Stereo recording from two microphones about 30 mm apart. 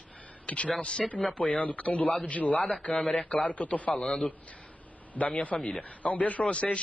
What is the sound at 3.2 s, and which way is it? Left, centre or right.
Speech, left.